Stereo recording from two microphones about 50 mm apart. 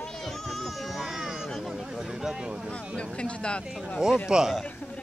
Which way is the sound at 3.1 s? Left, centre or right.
Left.